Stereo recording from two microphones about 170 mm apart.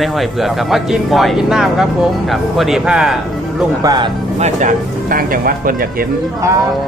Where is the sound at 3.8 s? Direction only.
25° right (ahead or behind).